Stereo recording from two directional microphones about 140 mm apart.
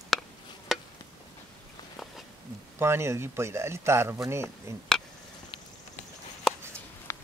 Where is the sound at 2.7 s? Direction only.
20° right (ahead or behind).